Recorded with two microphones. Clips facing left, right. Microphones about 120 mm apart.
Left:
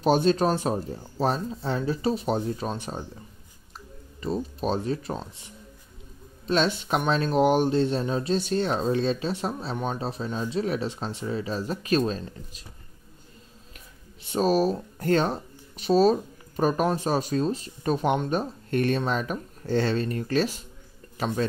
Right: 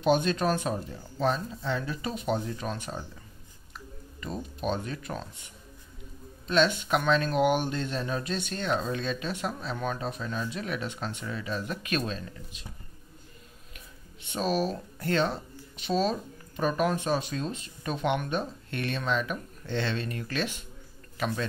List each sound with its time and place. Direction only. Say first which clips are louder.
0.0 s speech: left 4 dB; 35° left (ahead or behind)
4.2 s speech: left 6 dB; 35° left (ahead or behind)
13.7 s speech: left 1 dB; 40° left (ahead or behind)